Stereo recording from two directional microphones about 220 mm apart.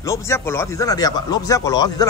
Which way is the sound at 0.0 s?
15° left (ahead or behind).